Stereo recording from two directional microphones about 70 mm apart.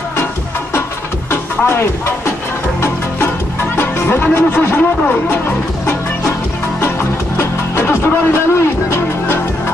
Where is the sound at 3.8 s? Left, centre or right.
Left.